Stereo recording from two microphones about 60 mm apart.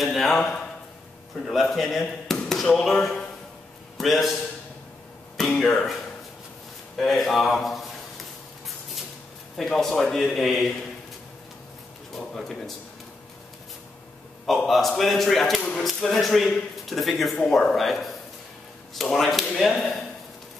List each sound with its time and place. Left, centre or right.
0.0 s a man's voice: centre
2.0 s a man's voice: centre
5.4 s speech: centre
7.1 s a man's voice: centre
9.6 s a man's voice: centre
12.2 s a man's voice: centre
14.7 s a man's voice: centre